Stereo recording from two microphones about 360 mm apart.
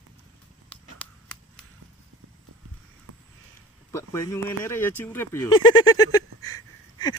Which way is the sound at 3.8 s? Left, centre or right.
Centre.